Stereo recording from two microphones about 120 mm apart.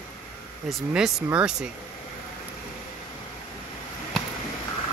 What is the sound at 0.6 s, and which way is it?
Speech, 5° right (ahead or behind).